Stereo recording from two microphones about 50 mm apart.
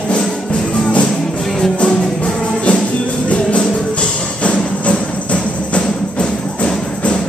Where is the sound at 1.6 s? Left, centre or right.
Centre.